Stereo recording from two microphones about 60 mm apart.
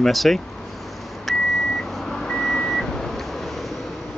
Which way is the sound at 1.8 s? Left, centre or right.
Centre.